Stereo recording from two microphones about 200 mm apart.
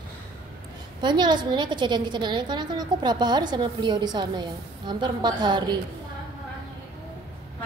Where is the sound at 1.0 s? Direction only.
20° right (ahead or behind).